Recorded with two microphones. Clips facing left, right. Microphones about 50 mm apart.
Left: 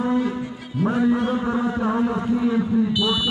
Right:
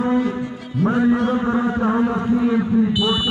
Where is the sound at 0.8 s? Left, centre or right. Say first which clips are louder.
Right 3 dB; right.